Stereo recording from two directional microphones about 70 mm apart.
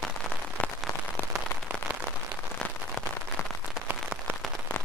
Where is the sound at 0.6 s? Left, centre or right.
Left.